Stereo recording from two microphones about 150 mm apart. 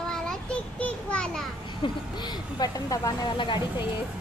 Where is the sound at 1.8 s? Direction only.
30° left (ahead or behind).